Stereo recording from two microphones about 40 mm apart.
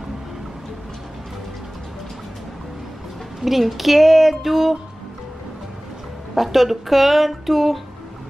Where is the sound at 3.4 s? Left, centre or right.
Centre.